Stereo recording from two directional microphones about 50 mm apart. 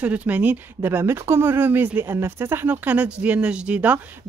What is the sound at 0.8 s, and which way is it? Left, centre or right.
Speech, right.